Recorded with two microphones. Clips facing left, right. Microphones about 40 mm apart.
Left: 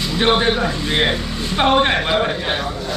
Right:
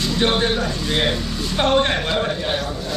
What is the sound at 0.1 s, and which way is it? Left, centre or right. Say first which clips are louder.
Speech: left 4 dB; left.